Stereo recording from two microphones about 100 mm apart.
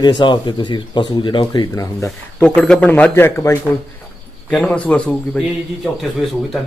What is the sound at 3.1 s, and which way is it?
Speech, 25° left (ahead or behind).